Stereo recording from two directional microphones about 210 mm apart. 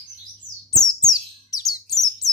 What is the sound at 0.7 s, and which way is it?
Bird, 20° left (ahead or behind).